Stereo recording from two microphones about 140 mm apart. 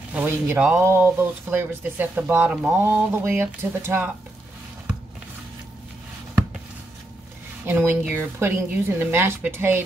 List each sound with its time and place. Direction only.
0.1 s speech: 15° right (ahead or behind)
7.6 s speech: 15° right (ahead or behind)